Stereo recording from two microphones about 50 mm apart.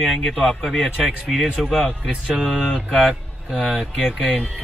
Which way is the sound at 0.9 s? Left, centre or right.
Centre.